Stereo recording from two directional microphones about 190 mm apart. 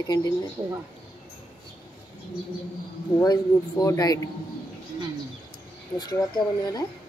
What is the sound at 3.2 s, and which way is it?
A woman's voice, 20° left (ahead or behind).